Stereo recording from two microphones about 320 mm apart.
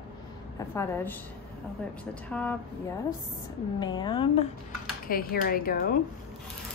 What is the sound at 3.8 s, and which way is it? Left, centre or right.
Speech, centre.